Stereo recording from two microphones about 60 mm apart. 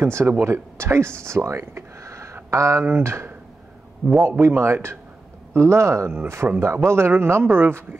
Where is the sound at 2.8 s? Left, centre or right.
Right.